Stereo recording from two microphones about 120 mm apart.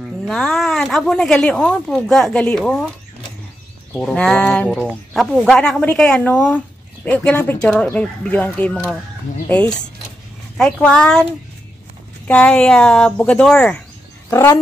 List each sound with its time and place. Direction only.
0.0 s speech: centre (ahead or behind)
3.9 s a woman's voice: 5° left (ahead or behind)
12.3 s a woman's voice: 10° left (ahead or behind)
14.3 s speech: 25° left (ahead or behind)